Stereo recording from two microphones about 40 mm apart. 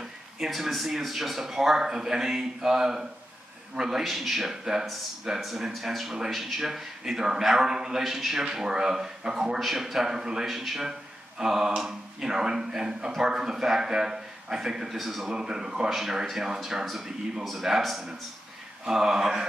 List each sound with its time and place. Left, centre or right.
0.5 s speech: centre
4.0 s speech: centre
9.6 s speech: centre
10.4 s speech: centre
15.2 s speech: centre